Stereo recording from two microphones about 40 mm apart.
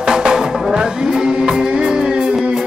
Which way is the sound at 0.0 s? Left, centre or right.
Centre.